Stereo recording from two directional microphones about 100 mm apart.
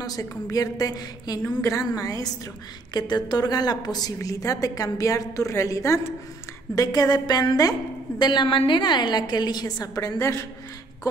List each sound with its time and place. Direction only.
0.0 s a woman's voice: 40° left (ahead or behind)